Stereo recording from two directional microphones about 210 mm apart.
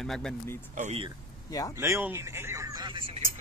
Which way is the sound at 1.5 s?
15° left (ahead or behind).